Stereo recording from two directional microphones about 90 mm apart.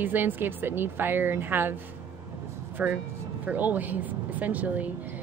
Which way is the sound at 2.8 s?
15° right (ahead or behind).